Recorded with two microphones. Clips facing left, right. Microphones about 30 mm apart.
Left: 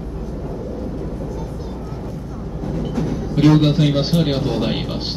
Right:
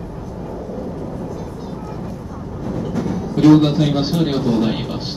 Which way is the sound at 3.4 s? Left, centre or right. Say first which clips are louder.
Right 3 dB; centre.